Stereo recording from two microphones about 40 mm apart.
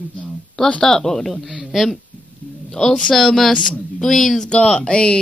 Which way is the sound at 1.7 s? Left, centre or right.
Centre.